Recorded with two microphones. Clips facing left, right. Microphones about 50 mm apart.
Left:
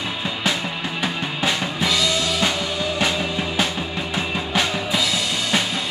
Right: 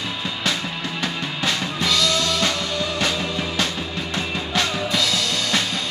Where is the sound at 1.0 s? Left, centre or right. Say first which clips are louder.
Left 2 dB; centre.